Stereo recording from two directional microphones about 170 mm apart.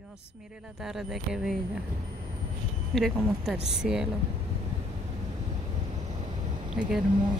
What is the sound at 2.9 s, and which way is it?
Speech, centre (ahead or behind).